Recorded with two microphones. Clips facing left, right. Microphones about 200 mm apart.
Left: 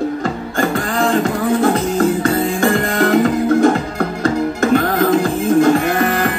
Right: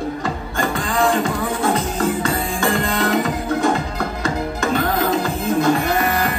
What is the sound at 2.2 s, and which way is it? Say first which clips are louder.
Music: left 6 dB; 50° left (ahead or behind).